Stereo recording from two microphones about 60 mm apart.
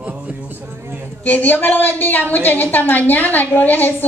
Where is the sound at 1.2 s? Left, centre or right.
Left.